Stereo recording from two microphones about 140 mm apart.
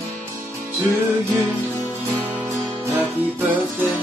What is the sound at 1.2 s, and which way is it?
Music, 20° right (ahead or behind).